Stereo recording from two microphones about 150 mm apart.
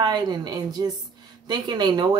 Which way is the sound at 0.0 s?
30° right (ahead or behind).